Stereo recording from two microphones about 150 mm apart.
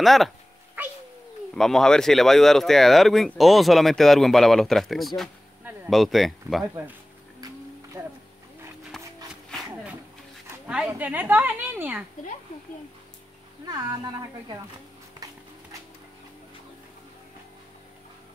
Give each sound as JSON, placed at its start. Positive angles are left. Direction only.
{"t": 0.0, "sound": "speech", "side_deg": 0}
{"t": 0.8, "sound": "cat", "side_deg": -10}
{"t": 1.5, "sound": "speech", "side_deg": 5}
{"t": 6.6, "sound": "a sound", "side_deg": -20}
{"t": 8.9, "sound": "a sound", "side_deg": 0}
{"t": 10.9, "sound": "a woman's voice", "side_deg": -10}
{"t": 13.7, "sound": "a woman's voice", "side_deg": -25}